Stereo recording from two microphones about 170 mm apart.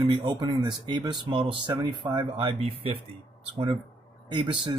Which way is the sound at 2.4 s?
30° right (ahead or behind).